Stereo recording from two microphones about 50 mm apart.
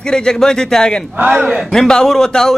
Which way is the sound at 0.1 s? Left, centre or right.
Centre.